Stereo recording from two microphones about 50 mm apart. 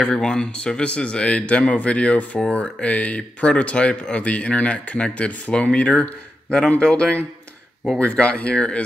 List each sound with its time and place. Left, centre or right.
0.0 s speech: centre